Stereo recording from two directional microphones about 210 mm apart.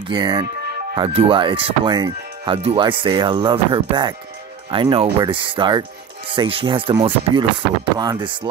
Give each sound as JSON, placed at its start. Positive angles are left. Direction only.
{"t": 0.1, "sound": "speech", "side_deg": -20}